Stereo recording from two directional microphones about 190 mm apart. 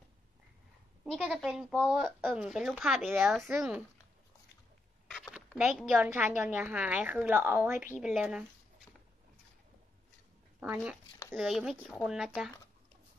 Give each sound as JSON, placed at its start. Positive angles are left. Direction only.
{"t": 1.1, "sound": "a woman's voice", "side_deg": 0}
{"t": 5.1, "sound": "a woman's voice", "side_deg": -5}
{"t": 10.6, "sound": "a woman's voice", "side_deg": -5}